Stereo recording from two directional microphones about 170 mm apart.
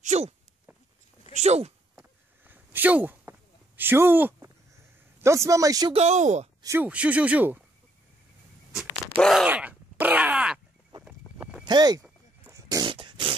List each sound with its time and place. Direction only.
0.0 s speech: 45° right (ahead or behind)
1.3 s speech: 40° right (ahead or behind)
2.0 s a sound: 10° right (ahead or behind)
5.2 s a man's voice: 15° right (ahead or behind)
5.9 s speech: 45° right (ahead or behind)
6.6 s speech: 15° right (ahead or behind)
9.2 s groan: centre (ahead or behind)
9.5 s groan: 10° right (ahead or behind)
11.6 s fart: 25° right (ahead or behind)